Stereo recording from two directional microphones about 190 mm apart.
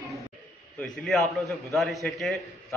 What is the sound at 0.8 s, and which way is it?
A man's voice, centre (ahead or behind).